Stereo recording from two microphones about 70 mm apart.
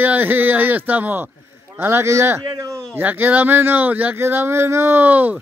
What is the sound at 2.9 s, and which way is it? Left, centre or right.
Speech, right.